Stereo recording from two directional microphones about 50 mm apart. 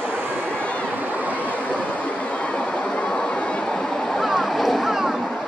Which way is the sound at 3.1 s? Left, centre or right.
Left.